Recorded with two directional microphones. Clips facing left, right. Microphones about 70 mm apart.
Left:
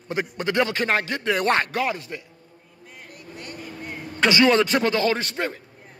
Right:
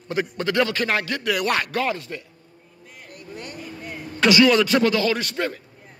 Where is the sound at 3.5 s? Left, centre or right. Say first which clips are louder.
Even; left.